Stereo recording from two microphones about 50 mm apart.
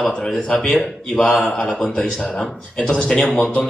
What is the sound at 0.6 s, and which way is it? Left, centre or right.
Speech, centre.